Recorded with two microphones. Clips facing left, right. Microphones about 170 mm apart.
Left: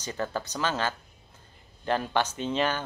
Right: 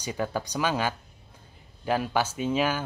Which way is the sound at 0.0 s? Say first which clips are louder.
Right 2 dB; 10° right (ahead or behind).